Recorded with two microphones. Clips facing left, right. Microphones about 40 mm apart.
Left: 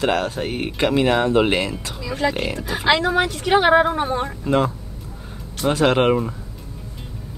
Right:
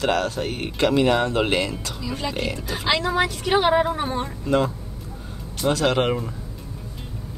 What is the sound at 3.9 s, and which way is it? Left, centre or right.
Speech, left.